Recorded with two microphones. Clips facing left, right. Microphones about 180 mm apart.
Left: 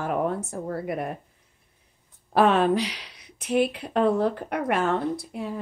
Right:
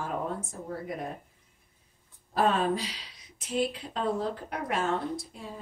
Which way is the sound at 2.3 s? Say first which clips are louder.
Left 6 dB; 75° left (ahead or behind).